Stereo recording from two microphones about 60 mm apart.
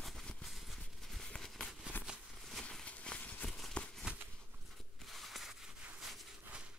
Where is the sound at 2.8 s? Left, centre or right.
Left.